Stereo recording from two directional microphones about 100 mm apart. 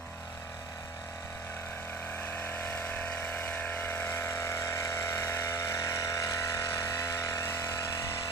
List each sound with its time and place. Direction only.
2.2 s vehicle: 20° left (ahead or behind)